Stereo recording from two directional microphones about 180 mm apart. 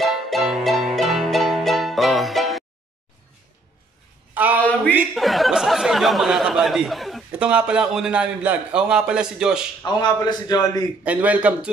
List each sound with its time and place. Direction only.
0.0 s music: centre (ahead or behind)
4.3 s a sound: 10° right (ahead or behind)
4.9 s speech: centre (ahead or behind)
9.8 s a man's voice: 25° left (ahead or behind)
11.1 s a man's voice: 10° right (ahead or behind)